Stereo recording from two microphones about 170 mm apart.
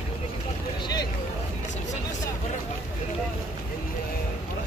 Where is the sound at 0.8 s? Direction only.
25° left (ahead or behind).